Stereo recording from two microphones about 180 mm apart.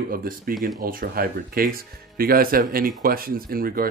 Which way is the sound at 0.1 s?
50° right (ahead or behind).